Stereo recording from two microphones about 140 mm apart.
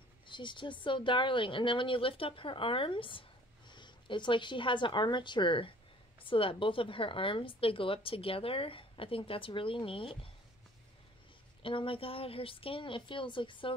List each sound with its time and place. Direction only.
0.3 s speech: 35° left (ahead or behind)
11.6 s speech: 40° left (ahead or behind)